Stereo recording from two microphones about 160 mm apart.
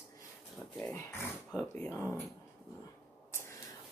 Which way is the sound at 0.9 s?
15° left (ahead or behind).